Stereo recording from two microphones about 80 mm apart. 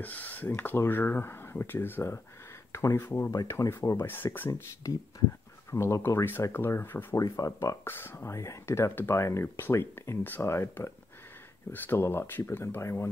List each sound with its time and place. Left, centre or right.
0.0 s speech: left
3.6 s speech: left
4.0 s speech: left
4.8 s speech: left
7.2 s speech: left
7.8 s speech: left